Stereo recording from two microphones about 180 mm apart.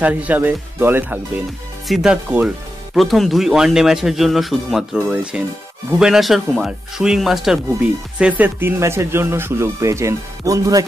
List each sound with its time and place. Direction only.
0.0 s speech: 10° right (ahead or behind)